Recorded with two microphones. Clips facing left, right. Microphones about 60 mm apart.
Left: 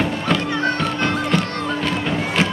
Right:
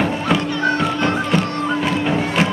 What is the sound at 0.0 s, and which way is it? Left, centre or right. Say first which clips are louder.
Music: right 2 dB; centre.